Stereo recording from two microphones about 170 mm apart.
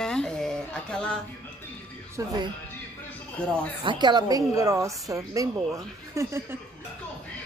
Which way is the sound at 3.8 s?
25° right (ahead or behind).